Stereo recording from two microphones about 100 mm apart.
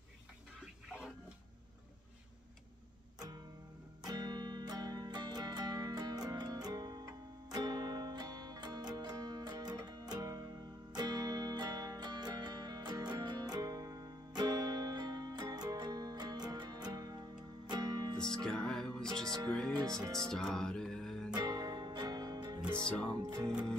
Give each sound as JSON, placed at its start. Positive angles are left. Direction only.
{"t": 4.0, "sound": "music", "side_deg": -40}
{"t": 18.3, "sound": "music", "side_deg": 5}
{"t": 19.2, "sound": "music", "side_deg": -40}
{"t": 19.5, "sound": "speech", "side_deg": 5}
{"t": 20.1, "sound": "music", "side_deg": 5}
{"t": 21.4, "sound": "music", "side_deg": -45}